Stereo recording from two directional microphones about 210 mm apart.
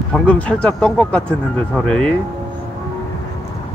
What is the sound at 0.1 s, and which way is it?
Speech, 5° left (ahead or behind).